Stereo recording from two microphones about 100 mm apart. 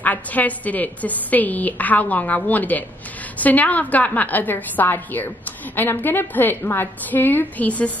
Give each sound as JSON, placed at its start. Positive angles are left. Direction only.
{"t": 0.0, "sound": "a woman's voice", "side_deg": 15}